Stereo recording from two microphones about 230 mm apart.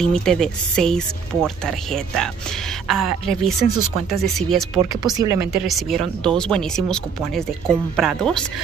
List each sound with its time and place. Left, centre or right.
0.0 s speech: centre
5.1 s speech: centre
5.5 s speech: centre